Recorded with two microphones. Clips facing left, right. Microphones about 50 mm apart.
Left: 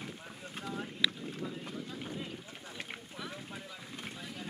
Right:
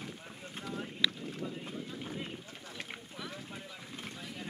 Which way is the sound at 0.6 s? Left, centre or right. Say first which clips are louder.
Even; centre.